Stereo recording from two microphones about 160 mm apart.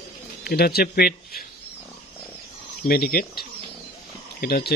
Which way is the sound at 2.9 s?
65° left (ahead or behind).